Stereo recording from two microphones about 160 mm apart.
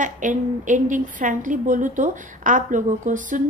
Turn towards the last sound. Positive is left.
turn(degrees=-55)  # may be behind; listen again after turning